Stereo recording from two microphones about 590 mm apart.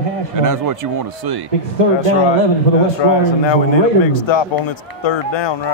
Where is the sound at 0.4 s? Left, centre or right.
Right.